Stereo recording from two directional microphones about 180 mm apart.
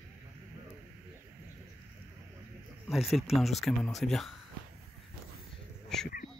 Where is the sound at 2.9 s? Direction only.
Centre (ahead or behind).